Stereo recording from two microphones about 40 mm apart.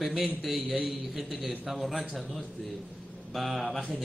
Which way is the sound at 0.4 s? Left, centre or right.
Centre.